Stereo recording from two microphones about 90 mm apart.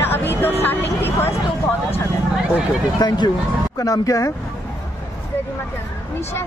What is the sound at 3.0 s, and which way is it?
Speech, 55° left (ahead or behind).